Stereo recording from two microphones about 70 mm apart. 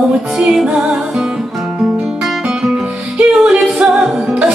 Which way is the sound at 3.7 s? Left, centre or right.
Centre.